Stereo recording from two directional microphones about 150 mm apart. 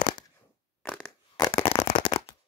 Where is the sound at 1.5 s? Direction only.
40° left (ahead or behind).